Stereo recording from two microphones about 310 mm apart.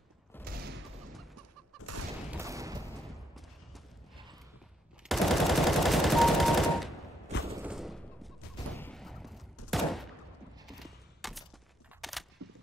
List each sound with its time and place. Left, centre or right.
0.5 s fusillade: right
1.9 s fusillade: right
2.3 s a sound: centre
2.9 s a sound: centre
5.0 s machine gun: centre
7.6 s fusillade: centre
8.7 s gunshot: centre
9.7 s fusillade: centre
10.7 s a sound: centre